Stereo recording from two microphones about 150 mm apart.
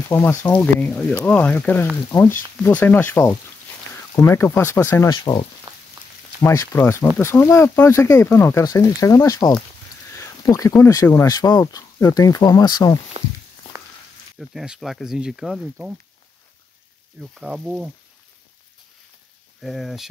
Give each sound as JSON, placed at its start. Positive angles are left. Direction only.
{"t": 0.1, "sound": "speech", "side_deg": 15}
{"t": 5.1, "sound": "speech", "side_deg": 30}
{"t": 6.4, "sound": "speech", "side_deg": 20}
{"t": 14.4, "sound": "speech", "side_deg": -5}
{"t": 17.2, "sound": "speech", "side_deg": 0}
{"t": 19.6, "sound": "speech", "side_deg": 0}